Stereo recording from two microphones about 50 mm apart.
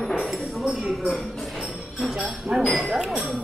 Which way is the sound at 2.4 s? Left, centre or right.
Centre.